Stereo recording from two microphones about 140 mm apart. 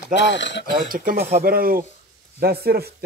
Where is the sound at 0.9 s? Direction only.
85° right.